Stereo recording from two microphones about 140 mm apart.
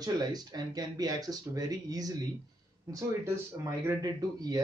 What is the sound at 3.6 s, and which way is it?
Speech, 25° right (ahead or behind).